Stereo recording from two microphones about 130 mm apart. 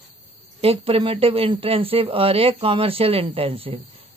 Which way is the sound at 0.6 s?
45° right (ahead or behind).